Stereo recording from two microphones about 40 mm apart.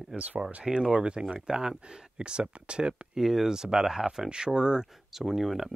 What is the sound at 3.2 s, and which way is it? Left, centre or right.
Speech, centre.